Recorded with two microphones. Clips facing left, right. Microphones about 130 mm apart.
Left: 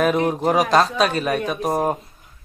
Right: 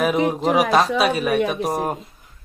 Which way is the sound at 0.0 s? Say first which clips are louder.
Even; 5° right (ahead or behind).